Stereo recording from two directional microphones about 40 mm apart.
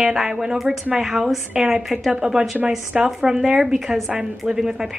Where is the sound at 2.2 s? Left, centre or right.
Centre.